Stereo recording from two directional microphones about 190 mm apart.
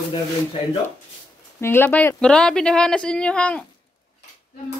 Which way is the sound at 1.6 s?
10° left (ahead or behind).